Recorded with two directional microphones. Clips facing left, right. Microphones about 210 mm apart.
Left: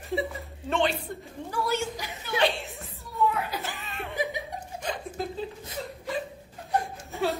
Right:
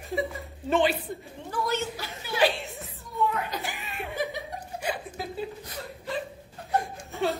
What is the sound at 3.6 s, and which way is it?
Chuckle, 15° right (ahead or behind).